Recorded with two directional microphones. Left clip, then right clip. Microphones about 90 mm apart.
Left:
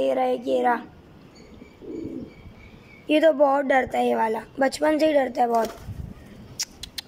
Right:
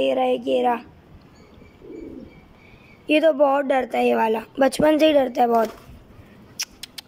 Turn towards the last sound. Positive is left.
turn(degrees=-15)  # may be behind; listen again after turning